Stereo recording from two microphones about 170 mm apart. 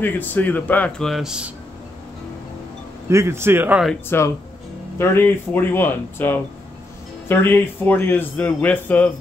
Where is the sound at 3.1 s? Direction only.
15° right (ahead or behind).